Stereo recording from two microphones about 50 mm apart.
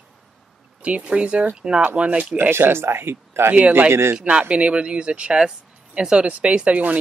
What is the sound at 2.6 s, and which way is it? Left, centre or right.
Speech, right.